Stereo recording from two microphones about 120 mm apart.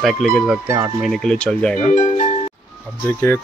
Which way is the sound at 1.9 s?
75° left (ahead or behind).